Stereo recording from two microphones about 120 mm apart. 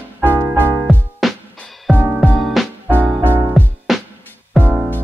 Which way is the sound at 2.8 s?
15° right (ahead or behind).